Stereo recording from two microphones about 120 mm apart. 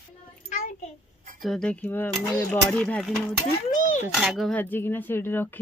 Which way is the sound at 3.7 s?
90° left.